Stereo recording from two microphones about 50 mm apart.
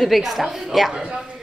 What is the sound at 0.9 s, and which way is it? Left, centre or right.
Speech, centre.